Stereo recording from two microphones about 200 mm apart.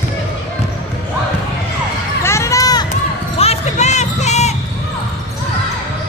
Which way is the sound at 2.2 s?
15° left (ahead or behind).